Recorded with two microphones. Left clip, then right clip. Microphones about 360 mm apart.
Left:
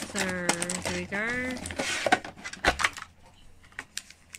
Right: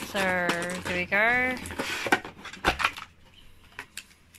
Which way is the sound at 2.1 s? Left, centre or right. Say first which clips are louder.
Left 1 dB; centre.